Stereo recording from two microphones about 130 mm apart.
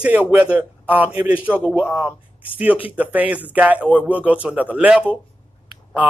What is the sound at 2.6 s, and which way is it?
Speech, 10° right (ahead or behind).